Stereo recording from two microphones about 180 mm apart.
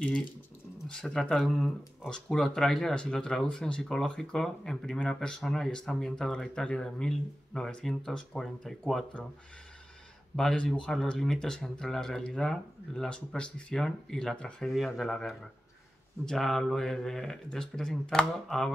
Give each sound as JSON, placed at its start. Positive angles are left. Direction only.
{"t": 0.8, "sound": "speech", "side_deg": 5}
{"t": 10.3, "sound": "speech", "side_deg": 5}